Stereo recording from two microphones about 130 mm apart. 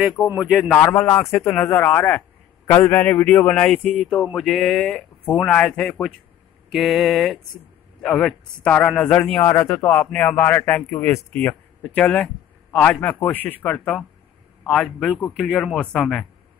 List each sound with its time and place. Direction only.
0.2 s a man's voice: 20° left (ahead or behind); by 16.3 s centre (ahead or behind)